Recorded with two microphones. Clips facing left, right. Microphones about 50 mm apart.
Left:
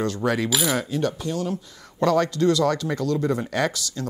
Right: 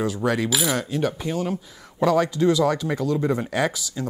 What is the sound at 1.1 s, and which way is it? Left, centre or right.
Speech, centre.